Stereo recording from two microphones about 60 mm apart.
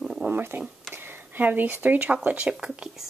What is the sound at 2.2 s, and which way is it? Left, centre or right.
Speech, centre.